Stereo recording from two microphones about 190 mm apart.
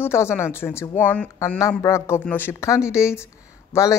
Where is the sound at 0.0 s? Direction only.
15° left (ahead or behind).